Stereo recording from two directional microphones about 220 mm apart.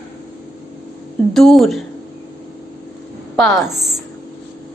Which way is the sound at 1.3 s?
Centre (ahead or behind).